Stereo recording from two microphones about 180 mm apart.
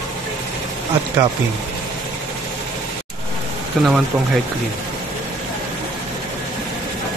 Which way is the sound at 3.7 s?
Centre (ahead or behind).